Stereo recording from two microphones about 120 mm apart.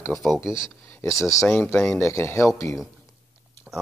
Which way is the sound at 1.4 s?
10° left (ahead or behind).